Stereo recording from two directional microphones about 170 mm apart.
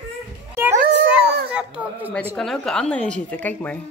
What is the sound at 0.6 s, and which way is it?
Children playing, 15° right (ahead or behind).